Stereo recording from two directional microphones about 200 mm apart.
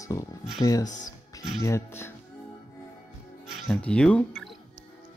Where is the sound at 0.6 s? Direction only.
15° left (ahead or behind).